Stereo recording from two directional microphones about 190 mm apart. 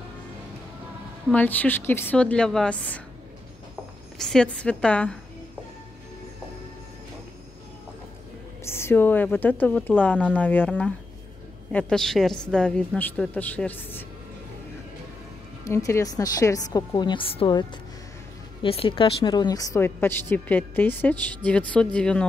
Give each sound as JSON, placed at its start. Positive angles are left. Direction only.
{"t": 1.3, "sound": "a woman's voice", "side_deg": 10}
{"t": 4.2, "sound": "a woman's voice", "side_deg": 5}
{"t": 8.6, "sound": "a woman's voice", "side_deg": 15}
{"t": 15.6, "sound": "a woman's voice", "side_deg": 15}